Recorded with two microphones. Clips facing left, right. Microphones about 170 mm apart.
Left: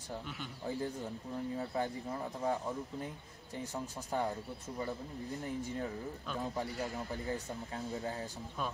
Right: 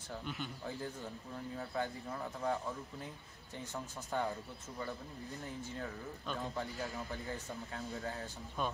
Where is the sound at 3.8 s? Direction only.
10° left (ahead or behind).